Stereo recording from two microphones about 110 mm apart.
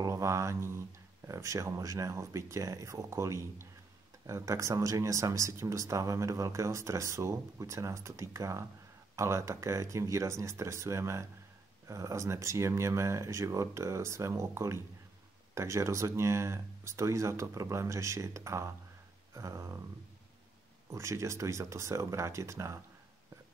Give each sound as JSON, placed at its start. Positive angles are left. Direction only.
{"t": 0.0, "sound": "speech", "side_deg": -30}
{"t": 20.9, "sound": "speech", "side_deg": -25}